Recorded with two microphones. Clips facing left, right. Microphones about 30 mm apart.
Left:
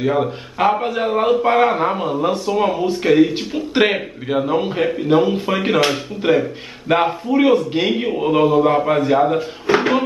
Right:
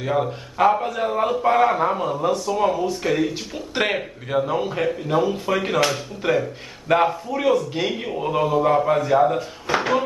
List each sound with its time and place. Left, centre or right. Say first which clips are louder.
0.0 s a man's voice: left 4 dB; centre